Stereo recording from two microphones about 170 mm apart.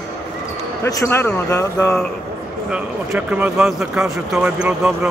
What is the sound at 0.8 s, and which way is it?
Speech, 15° left (ahead or behind).